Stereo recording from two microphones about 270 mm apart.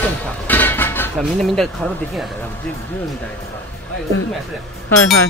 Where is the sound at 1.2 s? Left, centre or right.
Centre.